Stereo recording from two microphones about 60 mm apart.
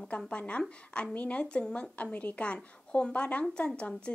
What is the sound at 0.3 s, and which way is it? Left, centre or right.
A woman's voice, centre.